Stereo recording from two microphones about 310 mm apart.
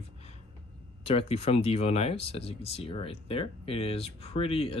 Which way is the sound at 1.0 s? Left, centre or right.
Centre.